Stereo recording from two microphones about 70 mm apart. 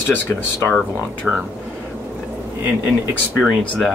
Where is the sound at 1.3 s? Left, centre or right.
Centre.